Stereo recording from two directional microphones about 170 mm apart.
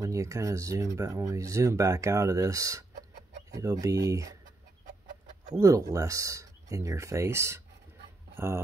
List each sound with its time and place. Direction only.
0.0 s speech: 20° right (ahead or behind)
5.2 s bird: 45° right (ahead or behind)
5.6 s speech: 20° right (ahead or behind)